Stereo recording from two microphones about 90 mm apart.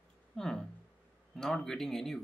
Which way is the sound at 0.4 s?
5° left (ahead or behind).